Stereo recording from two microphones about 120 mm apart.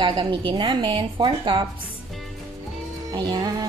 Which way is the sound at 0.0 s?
40° right (ahead or behind).